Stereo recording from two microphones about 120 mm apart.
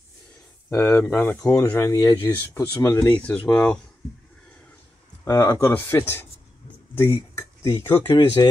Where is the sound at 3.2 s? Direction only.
10° left (ahead or behind).